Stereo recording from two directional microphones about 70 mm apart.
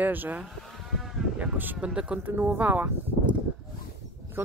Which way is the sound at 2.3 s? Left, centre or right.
Right.